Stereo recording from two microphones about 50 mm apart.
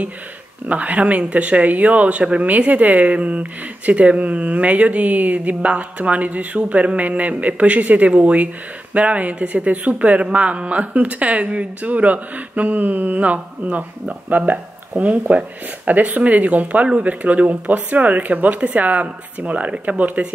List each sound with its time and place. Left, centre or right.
0.7 s speech: right